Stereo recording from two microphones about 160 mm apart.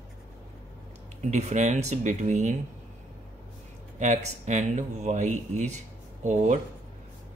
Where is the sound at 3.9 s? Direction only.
50° right (ahead or behind).